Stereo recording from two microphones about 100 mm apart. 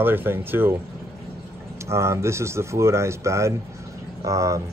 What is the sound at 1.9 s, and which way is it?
Speech, 30° right (ahead or behind).